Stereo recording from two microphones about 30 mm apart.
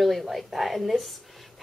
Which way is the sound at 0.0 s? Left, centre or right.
Centre.